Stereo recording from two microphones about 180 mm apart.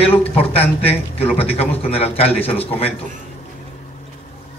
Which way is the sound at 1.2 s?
35° left (ahead or behind).